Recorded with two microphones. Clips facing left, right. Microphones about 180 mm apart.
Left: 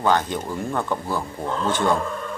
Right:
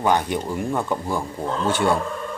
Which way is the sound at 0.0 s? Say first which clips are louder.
Right 1 dB; 15° right (ahead or behind).